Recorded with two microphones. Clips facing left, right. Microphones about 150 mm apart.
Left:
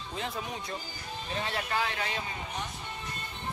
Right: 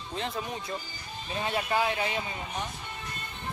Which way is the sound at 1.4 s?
15° right (ahead or behind).